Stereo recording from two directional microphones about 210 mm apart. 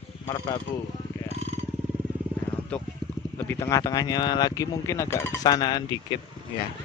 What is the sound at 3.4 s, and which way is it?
Speech, 10° left (ahead or behind).